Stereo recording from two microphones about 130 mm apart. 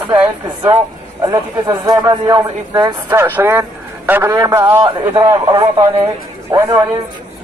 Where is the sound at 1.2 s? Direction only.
35° right (ahead or behind).